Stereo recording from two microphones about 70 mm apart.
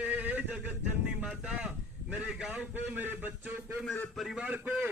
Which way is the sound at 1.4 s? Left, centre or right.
Right.